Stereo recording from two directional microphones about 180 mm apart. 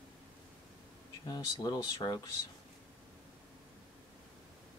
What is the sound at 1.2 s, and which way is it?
Speech, 20° left (ahead or behind).